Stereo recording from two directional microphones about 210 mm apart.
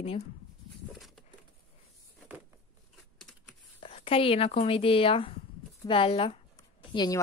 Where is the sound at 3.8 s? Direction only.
25° left (ahead or behind).